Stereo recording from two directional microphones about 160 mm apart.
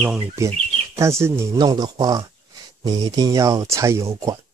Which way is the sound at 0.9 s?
15° right (ahead or behind).